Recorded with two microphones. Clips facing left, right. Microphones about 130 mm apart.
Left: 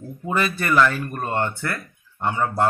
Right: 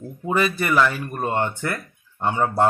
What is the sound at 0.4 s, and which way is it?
Speech, 10° right (ahead or behind).